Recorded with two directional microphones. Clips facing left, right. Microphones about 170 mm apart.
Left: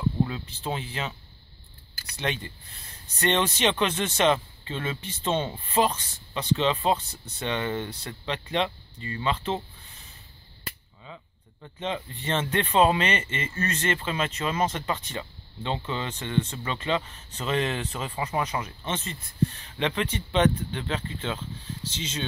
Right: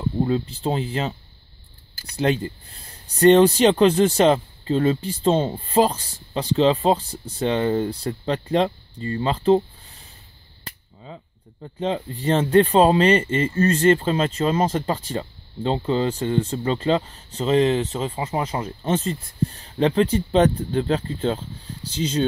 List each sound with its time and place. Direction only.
0.2 s speech: 35° right (ahead or behind)
11.1 s a sound: 35° right (ahead or behind)
11.6 s speech: 35° right (ahead or behind)